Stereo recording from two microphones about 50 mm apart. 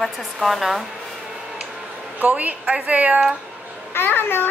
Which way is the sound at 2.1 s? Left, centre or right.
Right.